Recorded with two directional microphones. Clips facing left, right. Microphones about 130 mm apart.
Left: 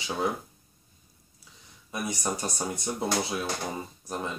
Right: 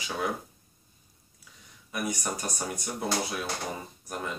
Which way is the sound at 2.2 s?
25° left (ahead or behind).